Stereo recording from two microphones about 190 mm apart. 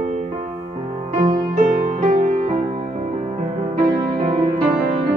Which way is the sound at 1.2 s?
25° right (ahead or behind).